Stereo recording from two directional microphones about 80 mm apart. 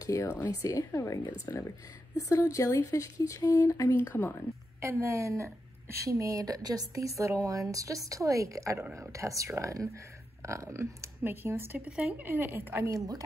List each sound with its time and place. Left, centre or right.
0.0 s speech: left
4.8 s a woman's voice: right
11.8 s a woman's voice: centre
12.9 s a woman's voice: right